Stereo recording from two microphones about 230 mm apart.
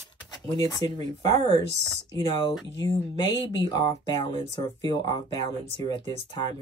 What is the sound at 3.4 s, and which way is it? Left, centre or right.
Speech, centre.